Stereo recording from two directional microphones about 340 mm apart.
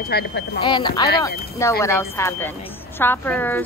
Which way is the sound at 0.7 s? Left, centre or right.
Centre.